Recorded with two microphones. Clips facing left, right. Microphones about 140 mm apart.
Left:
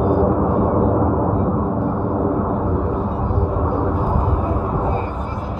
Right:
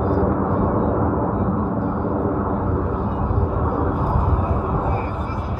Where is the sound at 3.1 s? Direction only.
30° left (ahead or behind).